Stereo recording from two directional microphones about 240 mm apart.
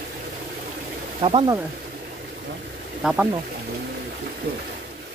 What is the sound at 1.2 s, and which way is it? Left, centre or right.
Speech, right.